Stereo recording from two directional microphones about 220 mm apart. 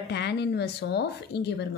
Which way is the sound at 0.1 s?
50° left (ahead or behind).